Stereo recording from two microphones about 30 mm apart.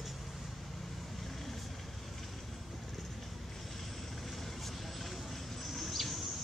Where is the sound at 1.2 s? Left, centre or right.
Centre.